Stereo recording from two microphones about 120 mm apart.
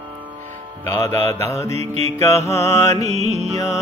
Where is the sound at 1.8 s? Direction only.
60° right (ahead or behind).